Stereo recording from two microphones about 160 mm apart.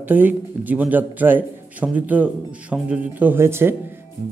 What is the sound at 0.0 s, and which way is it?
Speech, 10° right (ahead or behind).